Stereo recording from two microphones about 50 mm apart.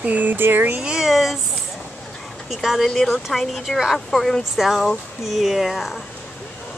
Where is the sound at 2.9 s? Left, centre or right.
Centre.